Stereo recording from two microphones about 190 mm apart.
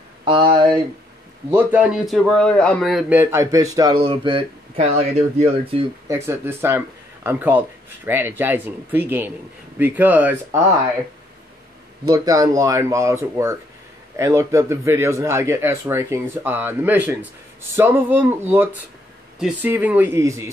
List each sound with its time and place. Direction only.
0.2 s speech: 25° right (ahead or behind)
1.5 s a man's voice: 10° right (ahead or behind); by 5.9 s 30° right (ahead or behind)
6.0 s a man's voice: 15° right (ahead or behind)
12.1 s a man's voice: 20° right (ahead or behind)
19.4 s a man's voice: 10° right (ahead or behind)